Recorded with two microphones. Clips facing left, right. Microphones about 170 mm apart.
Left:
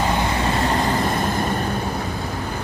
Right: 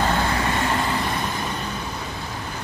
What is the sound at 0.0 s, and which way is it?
Vehicle, 15° left (ahead or behind).